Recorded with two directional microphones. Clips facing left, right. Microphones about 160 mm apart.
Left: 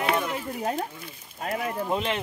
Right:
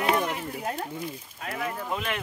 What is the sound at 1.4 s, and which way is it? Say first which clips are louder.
Speech: left 4 dB; 30° left (ahead or behind).